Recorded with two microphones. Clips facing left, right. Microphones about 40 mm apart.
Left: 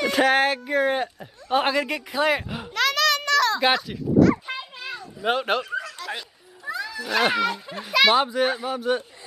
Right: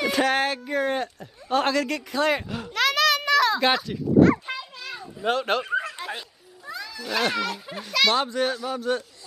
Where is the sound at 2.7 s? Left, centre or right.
Centre.